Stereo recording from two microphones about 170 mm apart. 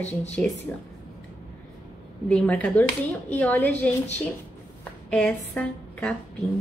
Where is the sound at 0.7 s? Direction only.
15° left (ahead or behind).